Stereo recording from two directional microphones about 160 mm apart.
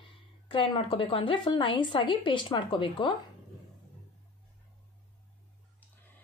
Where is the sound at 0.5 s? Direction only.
30° left (ahead or behind).